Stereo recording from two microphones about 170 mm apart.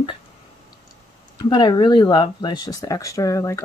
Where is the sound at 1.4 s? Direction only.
25° left (ahead or behind).